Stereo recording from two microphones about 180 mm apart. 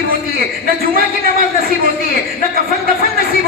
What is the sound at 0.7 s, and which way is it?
Speech, 55° right (ahead or behind).